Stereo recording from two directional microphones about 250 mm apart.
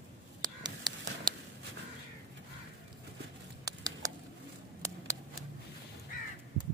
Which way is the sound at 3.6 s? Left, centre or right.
Centre.